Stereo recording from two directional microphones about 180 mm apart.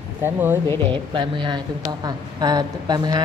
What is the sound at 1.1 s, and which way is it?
A woman's voice, 25° right (ahead or behind).